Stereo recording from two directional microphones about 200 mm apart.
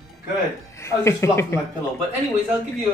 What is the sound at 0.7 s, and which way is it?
Speech, 15° left (ahead or behind).